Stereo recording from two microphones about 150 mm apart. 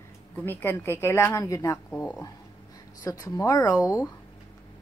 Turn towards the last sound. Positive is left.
turn(degrees=20)  # may be behind; listen again after turning